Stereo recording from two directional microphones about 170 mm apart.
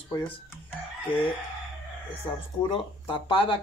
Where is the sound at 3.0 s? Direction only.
30° left (ahead or behind).